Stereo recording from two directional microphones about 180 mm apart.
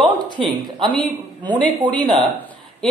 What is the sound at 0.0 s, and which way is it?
Speech, 30° right (ahead or behind).